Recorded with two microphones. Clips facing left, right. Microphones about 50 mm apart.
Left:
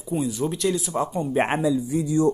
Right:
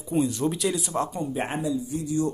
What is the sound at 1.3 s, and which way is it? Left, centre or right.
Speech, left.